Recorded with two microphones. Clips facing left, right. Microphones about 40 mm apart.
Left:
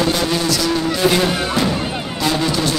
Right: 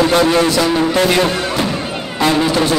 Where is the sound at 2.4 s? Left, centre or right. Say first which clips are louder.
Right 4 dB; right.